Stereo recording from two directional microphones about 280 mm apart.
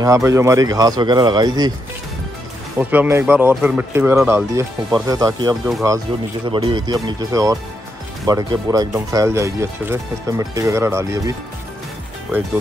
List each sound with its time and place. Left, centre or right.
0.0 s speech: centre
2.8 s speech: centre